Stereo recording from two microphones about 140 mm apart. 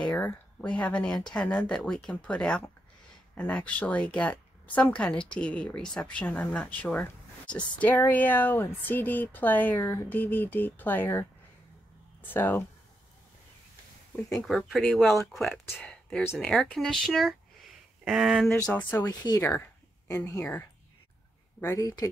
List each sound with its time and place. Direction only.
0.0 s speech: 10° left (ahead or behind)
14.3 s speech: centre (ahead or behind)
19.2 s speech: 25° left (ahead or behind)
19.5 s speech: 15° left (ahead or behind)